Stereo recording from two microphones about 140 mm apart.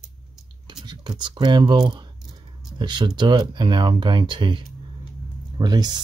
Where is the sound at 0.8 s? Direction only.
35° right (ahead or behind).